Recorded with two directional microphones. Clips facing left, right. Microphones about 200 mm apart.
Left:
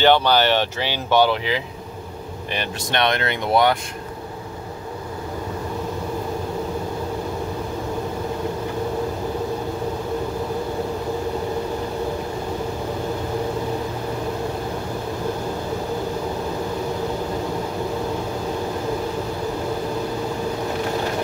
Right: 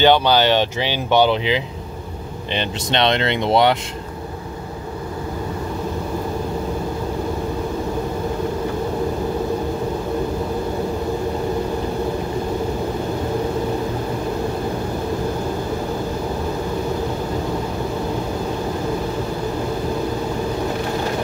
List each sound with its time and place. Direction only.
0.0 s speech: 15° right (ahead or behind)